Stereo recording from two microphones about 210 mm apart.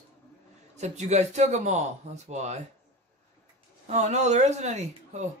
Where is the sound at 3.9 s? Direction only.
35° right (ahead or behind).